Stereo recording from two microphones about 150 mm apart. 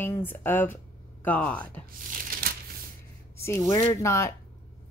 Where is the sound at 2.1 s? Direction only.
65° right (ahead or behind).